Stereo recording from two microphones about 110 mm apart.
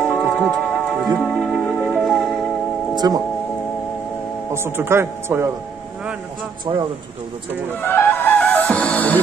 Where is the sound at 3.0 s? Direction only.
30° right (ahead or behind).